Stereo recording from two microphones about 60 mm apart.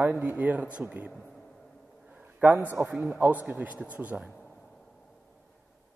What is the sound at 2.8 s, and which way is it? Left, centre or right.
Speech, right.